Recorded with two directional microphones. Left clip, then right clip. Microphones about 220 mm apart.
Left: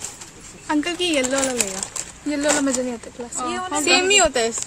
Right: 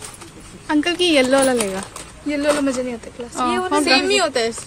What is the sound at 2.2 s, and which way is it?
Speech, 15° left (ahead or behind).